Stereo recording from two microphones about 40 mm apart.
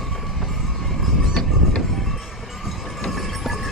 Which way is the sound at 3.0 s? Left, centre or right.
Centre.